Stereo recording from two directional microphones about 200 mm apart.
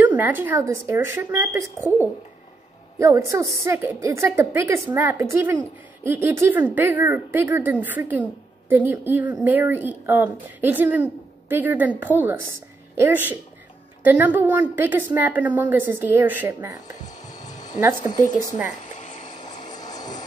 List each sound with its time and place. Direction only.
0.0 s speech: 10° right (ahead or behind)
3.0 s a woman's voice: 15° right (ahead or behind)
18.5 s a sound: 40° left (ahead or behind)
19.7 s vehicle: 20° left (ahead or behind)